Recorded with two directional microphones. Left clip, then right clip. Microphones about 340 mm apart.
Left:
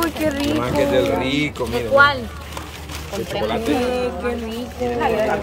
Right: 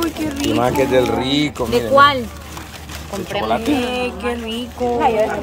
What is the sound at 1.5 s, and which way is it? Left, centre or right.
Speech, right.